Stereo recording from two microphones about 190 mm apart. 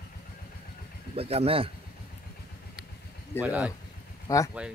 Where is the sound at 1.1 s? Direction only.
30° right (ahead or behind).